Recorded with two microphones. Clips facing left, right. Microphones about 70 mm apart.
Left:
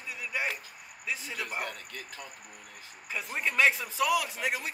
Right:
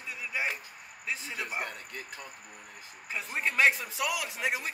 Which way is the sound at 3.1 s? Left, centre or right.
Centre.